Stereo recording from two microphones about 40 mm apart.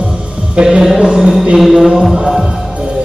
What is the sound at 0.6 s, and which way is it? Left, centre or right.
Music, centre.